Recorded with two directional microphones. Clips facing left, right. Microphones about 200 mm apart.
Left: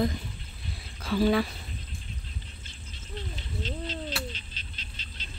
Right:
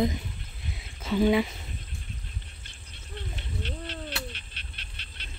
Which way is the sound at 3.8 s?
60° right (ahead or behind).